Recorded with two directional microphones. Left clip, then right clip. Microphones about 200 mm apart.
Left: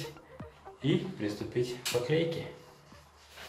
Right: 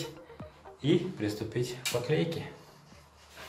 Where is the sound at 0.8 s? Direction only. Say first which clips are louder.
Right 3 dB; 20° right (ahead or behind).